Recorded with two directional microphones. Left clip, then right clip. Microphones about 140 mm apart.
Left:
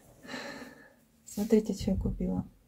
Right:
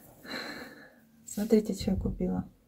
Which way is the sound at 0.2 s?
Centre (ahead or behind).